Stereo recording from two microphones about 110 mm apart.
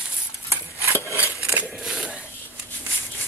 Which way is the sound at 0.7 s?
25° left (ahead or behind).